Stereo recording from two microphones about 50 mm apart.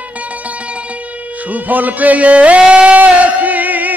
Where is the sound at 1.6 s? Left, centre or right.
Right.